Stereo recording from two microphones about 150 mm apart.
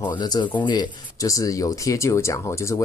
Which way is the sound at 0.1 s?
30° left (ahead or behind).